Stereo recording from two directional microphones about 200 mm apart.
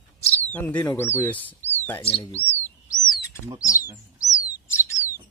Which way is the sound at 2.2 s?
10° left (ahead or behind).